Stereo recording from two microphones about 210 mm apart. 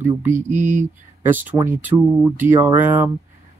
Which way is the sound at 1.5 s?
10° right (ahead or behind).